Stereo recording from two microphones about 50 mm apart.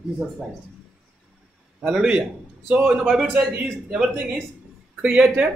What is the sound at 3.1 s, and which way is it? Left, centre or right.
Speech, centre.